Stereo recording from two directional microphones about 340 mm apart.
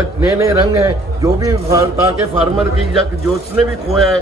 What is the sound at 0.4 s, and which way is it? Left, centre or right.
A man's voice, centre.